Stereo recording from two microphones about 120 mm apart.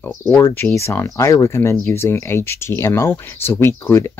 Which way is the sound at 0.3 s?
20° left (ahead or behind).